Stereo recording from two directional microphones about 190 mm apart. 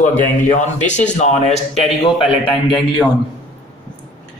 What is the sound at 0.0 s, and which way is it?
A man's voice, 40° left (ahead or behind).